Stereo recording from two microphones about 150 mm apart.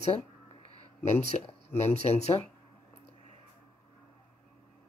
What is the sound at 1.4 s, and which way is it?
Speech, 45° left (ahead or behind).